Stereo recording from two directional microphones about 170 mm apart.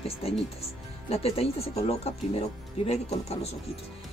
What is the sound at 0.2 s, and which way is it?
Speech, 35° left (ahead or behind).